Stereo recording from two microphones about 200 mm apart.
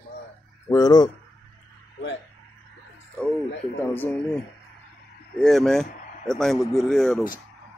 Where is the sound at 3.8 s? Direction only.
10° left (ahead or behind).